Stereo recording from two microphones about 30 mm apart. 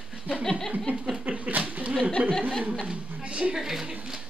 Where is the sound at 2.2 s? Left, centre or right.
Right.